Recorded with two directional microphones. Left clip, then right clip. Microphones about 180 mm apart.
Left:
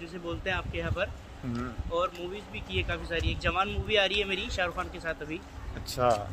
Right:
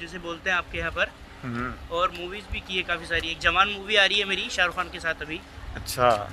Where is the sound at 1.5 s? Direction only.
15° right (ahead or behind).